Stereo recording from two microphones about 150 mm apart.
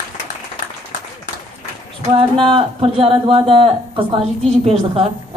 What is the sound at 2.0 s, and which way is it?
Speech, 35° right (ahead or behind).